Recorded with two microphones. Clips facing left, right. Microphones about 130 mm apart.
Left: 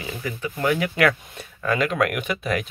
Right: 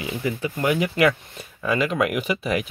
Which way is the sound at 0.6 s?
5° right (ahead or behind).